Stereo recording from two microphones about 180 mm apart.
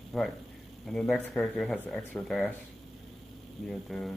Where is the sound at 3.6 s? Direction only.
Centre (ahead or behind).